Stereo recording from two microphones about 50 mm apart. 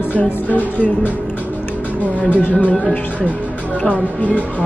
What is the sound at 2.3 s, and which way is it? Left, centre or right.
Music, left.